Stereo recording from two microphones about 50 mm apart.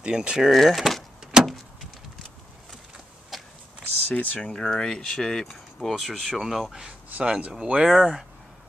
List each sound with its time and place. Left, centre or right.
0.0 s speech: centre
0.5 s speech: centre
1.2 s vehicle: centre
3.3 s a sound: centre
4.1 s speech: left
4.4 s speech: centre
6.9 s speech: right
7.8 s speech: centre